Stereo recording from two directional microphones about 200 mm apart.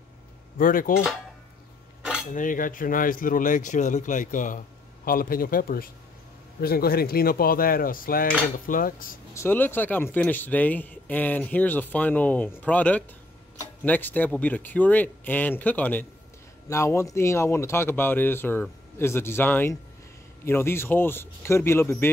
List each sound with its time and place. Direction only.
0.6 s speech: 45° left (ahead or behind)
2.3 s speech: 40° left (ahead or behind)
9.3 s speech: 10° left (ahead or behind)